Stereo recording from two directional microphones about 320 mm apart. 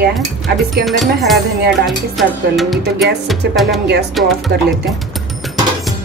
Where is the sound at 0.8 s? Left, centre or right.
Centre.